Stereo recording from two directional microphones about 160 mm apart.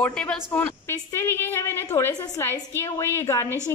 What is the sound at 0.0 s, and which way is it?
Speech, 10° left (ahead or behind).